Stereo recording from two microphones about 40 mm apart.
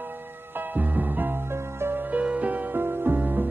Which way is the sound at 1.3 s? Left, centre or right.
Right.